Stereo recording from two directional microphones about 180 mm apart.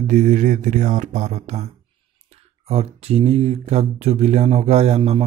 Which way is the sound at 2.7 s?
35° right (ahead or behind).